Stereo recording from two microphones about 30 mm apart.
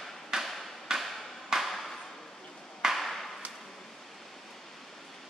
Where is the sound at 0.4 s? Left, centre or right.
Centre.